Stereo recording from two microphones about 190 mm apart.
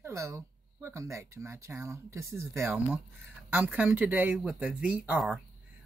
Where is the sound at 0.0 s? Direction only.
15° right (ahead or behind).